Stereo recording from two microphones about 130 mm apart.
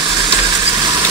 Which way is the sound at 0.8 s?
30° right (ahead or behind).